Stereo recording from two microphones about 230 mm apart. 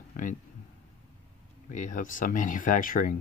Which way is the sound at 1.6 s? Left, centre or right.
Left.